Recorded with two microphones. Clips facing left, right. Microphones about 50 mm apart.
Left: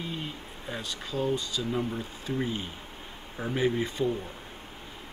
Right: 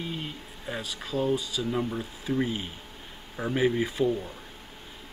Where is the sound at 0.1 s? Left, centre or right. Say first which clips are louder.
Even; centre.